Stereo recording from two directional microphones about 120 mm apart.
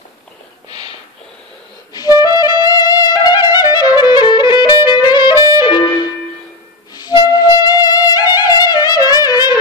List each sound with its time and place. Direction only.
2.0 s music: 30° left (ahead or behind)
7.0 s music: 35° left (ahead or behind)